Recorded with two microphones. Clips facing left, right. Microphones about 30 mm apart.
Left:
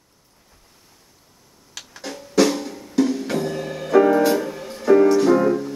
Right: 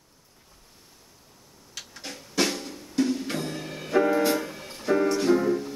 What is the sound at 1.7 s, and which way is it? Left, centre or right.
Music, left.